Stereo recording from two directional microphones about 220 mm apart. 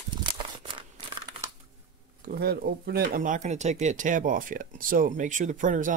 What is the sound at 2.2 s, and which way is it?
Speech, 45° right (ahead or behind).